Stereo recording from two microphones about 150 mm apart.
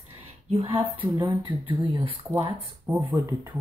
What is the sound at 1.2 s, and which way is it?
Speech, 30° right (ahead or behind).